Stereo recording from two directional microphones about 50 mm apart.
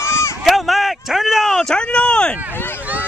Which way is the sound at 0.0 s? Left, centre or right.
Left.